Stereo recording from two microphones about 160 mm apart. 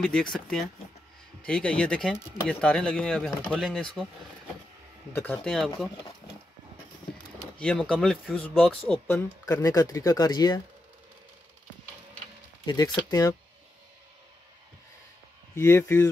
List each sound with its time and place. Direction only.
0.0 s speech: 5° left (ahead or behind)
5.1 s speech: 10° left (ahead or behind)
7.5 s speech: 5° left (ahead or behind); by 10.6 s 25° left (ahead or behind)
12.6 s speech: 25° left (ahead or behind)
15.5 s speech: 15° left (ahead or behind)